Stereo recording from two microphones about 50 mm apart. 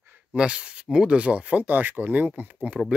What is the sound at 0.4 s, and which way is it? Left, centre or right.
Speech, centre.